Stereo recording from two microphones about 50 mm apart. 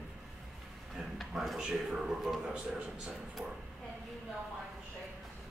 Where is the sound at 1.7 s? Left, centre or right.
Centre.